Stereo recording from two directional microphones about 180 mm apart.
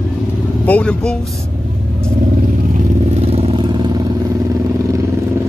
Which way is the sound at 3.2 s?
35° right (ahead or behind).